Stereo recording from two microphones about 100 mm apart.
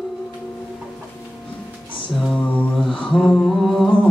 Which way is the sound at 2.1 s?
5° left (ahead or behind).